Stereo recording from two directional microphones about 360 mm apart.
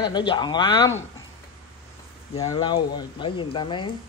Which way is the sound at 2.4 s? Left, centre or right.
Centre.